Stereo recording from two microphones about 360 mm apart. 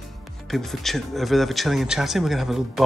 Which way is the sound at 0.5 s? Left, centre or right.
Centre.